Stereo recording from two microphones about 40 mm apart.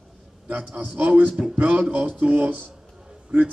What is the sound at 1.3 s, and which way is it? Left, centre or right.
Speech, centre.